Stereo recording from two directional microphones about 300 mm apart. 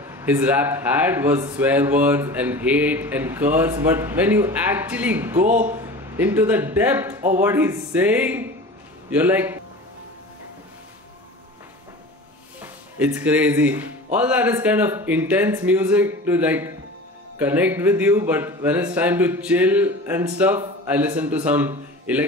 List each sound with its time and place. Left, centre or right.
0.0 s speech: centre
12.6 s speech: centre